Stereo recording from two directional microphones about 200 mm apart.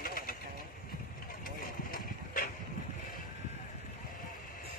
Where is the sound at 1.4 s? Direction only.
45° left (ahead or behind).